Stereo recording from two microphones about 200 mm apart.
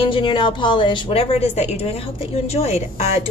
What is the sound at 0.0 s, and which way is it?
A woman's voice, 25° left (ahead or behind).